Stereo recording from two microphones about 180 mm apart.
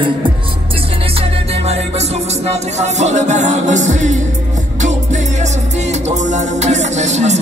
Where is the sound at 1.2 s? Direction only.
35° right (ahead or behind).